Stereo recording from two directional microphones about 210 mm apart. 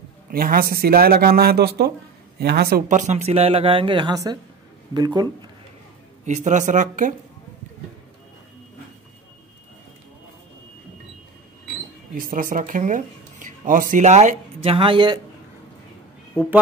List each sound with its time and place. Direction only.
0.3 s speech: 45° right (ahead or behind); by 5.5 s 20° right (ahead or behind)
6.2 s speech: 35° right (ahead or behind)
12.2 s speech: 40° right (ahead or behind); by 15.1 s 25° right (ahead or behind)